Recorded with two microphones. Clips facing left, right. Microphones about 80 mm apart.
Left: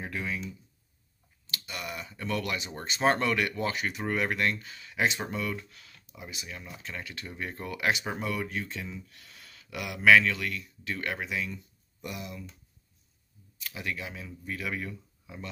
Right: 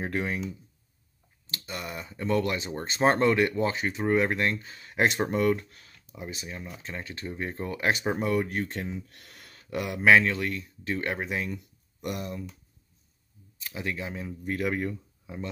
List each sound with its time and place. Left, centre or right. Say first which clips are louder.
0.0 s speech: right 5 dB; right
1.5 s speech: right 2 dB; right
11.5 s speech: right 5 dB; right
13.6 s speech: right 3 dB; right
14.5 s speech: right 6 dB; right
15.2 s speech: right 5 dB; right